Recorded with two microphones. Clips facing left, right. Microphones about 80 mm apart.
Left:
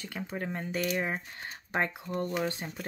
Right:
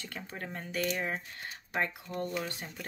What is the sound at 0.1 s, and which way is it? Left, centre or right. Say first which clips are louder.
Speech: left 7 dB; centre.